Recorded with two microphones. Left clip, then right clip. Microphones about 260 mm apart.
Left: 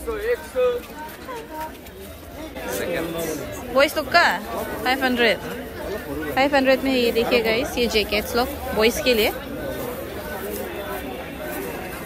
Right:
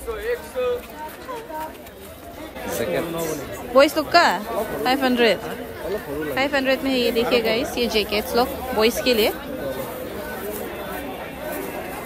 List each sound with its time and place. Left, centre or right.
0.6 s speech: left
2.6 s a sound: right
3.7 s speech: centre